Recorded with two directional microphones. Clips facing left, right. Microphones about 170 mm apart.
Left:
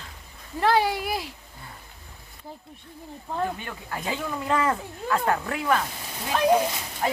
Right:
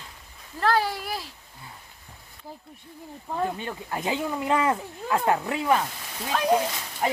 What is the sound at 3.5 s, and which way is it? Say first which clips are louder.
Speech: right 3 dB; 25° right (ahead or behind).